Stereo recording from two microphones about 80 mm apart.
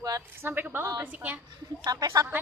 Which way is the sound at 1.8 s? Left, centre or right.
Right.